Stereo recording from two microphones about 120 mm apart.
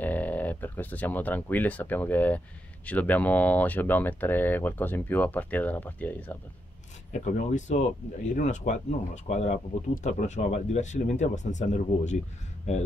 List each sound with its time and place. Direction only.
0.0 s speech: 15° left (ahead or behind)
7.1 s speech: 75° left (ahead or behind)
10.0 s speech: 80° left